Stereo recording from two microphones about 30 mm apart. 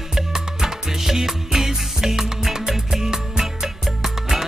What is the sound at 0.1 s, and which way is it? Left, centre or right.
Music, centre.